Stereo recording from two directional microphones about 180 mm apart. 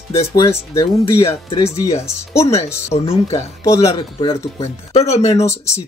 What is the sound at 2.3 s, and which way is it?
Speech, 15° left (ahead or behind).